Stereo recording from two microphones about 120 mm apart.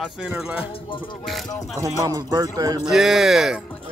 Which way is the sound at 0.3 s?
10° right (ahead or behind).